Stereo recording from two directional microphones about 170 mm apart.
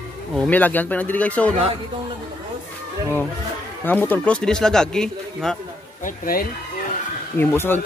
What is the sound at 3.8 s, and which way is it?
A man's voice, 10° left (ahead or behind).